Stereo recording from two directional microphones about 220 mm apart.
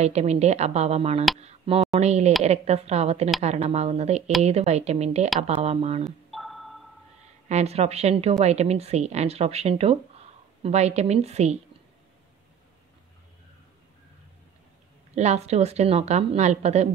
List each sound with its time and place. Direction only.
0.0 s a woman's voice: 30° right (ahead or behind)
6.0 s music: centre (ahead or behind)
7.4 s a woman's voice: 30° right (ahead or behind)
15.1 s a woman's voice: 30° right (ahead or behind)